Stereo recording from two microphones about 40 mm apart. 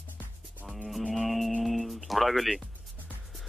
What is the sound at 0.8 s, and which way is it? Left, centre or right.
Music, centre.